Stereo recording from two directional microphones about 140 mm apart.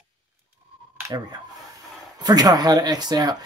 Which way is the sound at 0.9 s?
20° right (ahead or behind).